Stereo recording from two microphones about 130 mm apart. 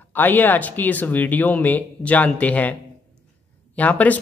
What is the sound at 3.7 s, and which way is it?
Speech, 10° left (ahead or behind).